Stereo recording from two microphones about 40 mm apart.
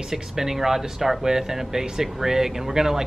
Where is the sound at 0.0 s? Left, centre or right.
Centre.